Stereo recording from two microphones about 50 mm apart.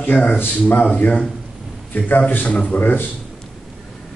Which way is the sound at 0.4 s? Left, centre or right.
Left.